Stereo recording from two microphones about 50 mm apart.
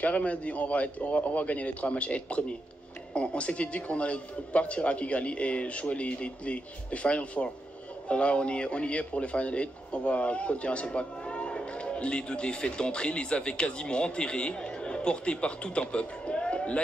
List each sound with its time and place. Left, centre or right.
0.0 s a man's voice: left